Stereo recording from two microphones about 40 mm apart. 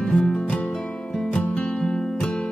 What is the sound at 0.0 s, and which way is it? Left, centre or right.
Music, left.